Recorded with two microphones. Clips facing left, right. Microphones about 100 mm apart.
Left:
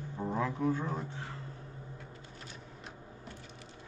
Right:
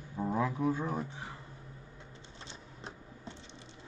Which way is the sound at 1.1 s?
15° right (ahead or behind).